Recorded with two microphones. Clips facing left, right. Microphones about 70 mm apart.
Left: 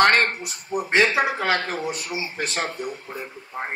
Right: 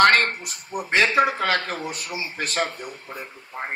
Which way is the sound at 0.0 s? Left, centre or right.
Right.